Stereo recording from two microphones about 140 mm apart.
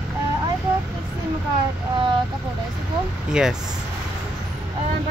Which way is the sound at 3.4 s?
5° right (ahead or behind).